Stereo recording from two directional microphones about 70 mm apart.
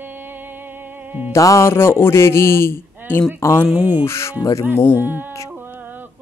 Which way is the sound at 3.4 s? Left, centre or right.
Left.